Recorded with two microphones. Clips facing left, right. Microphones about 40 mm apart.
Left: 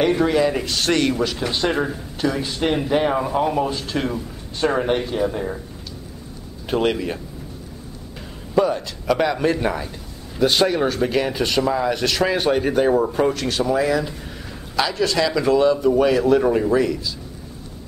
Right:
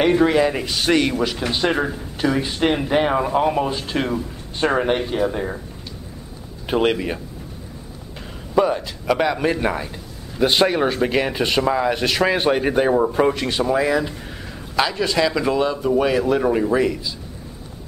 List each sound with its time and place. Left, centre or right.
0.0 s speech: centre
6.6 s speech: centre
8.5 s a man's voice: centre
16.7 s speech: centre